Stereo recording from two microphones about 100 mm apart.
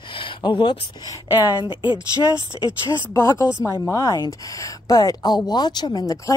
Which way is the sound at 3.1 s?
30° left (ahead or behind).